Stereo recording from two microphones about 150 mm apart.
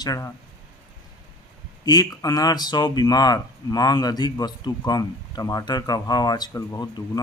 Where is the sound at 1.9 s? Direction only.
25° left (ahead or behind).